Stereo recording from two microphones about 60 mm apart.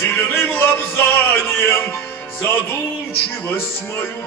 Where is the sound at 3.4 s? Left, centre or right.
Left.